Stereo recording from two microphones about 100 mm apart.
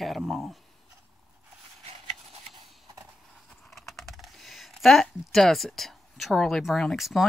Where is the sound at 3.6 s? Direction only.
Centre (ahead or behind).